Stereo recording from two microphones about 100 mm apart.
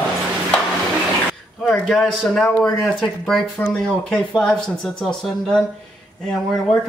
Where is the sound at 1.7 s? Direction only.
5° left (ahead or behind).